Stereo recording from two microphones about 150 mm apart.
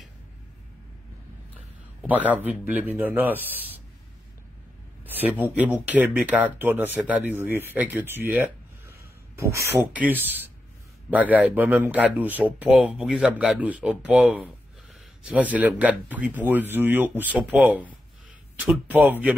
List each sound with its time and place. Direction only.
2.0 s speech: 10° right (ahead or behind)
5.0 s speech: 10° right (ahead or behind)
9.4 s speech: 20° right (ahead or behind)